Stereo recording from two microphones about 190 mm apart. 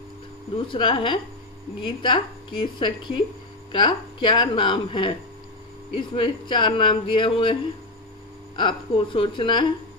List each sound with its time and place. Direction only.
0.7 s speech: 25° left (ahead or behind)
8.5 s speech: 25° left (ahead or behind)